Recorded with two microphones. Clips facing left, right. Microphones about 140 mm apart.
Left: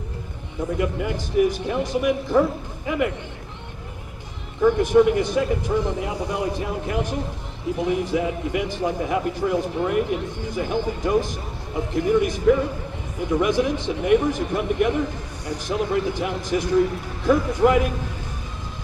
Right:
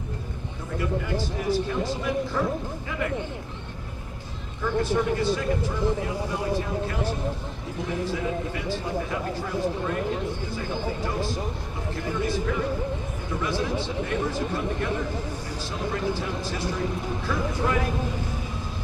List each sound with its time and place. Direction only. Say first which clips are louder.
0.7 s speech: even; 15° left (ahead or behind)
4.6 s speech: left 8 dB; 15° left (ahead or behind)
16.1 s speech: left 5 dB; 15° left (ahead or behind)